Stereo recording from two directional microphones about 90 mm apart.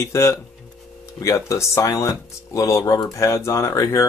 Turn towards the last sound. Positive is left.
turn(degrees=35)  # may be behind; listen again after turning